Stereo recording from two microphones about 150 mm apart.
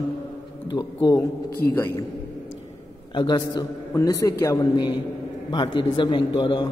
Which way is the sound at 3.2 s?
30° left (ahead or behind).